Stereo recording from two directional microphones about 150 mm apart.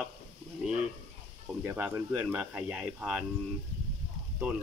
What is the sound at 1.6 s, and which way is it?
Speech, 20° right (ahead or behind).